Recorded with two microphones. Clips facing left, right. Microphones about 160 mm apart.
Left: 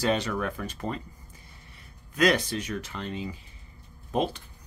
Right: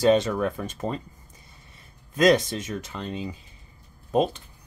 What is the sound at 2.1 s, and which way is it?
Speech, 20° right (ahead or behind).